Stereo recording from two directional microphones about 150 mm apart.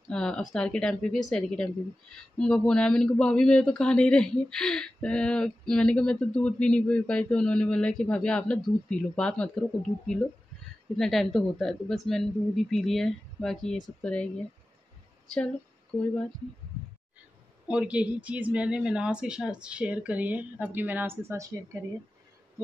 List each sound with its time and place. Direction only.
0.1 s a man's voice: 5° left (ahead or behind)
17.6 s a woman's voice: 10° right (ahead or behind)